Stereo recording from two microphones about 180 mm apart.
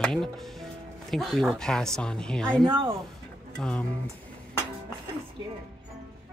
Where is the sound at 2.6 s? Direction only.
25° right (ahead or behind).